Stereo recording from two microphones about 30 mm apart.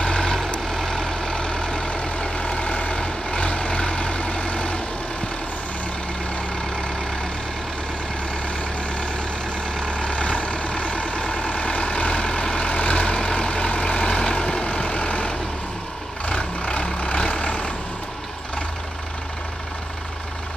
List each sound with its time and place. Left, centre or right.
0.2 s vehicle: centre; by 4.8 s left
9.9 s vehicle: left